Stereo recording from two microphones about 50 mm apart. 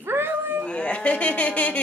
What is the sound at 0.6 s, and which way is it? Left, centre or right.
Speech, left.